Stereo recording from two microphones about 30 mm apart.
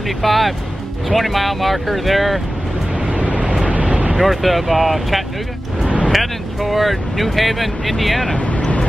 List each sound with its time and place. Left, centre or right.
0.2 s speech: centre
3.1 s vehicle: right
4.2 s speech: centre
8.5 s vehicle: left